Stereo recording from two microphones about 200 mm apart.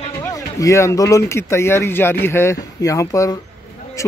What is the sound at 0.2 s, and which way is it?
Speech, 15° left (ahead or behind).